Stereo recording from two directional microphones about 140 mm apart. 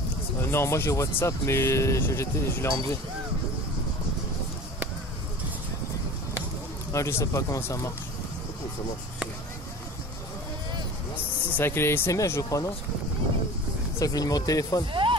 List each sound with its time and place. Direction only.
0.4 s speech: 20° left (ahead or behind)
6.9 s speech: 20° left (ahead or behind)
11.5 s speech: 15° left (ahead or behind)
13.9 s speech: 25° left (ahead or behind)
14.9 s a sound: 35° right (ahead or behind)